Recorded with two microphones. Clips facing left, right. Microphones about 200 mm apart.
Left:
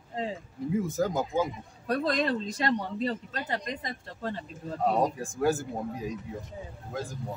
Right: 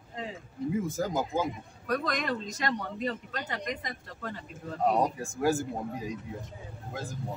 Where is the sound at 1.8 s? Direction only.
30° left (ahead or behind).